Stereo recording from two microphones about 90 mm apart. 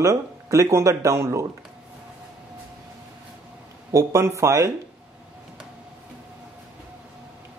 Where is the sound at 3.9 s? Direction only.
35° right (ahead or behind).